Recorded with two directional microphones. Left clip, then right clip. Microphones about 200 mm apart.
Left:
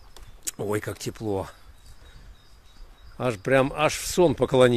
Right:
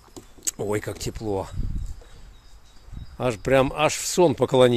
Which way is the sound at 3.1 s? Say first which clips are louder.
Right 2 dB; 5° right (ahead or behind).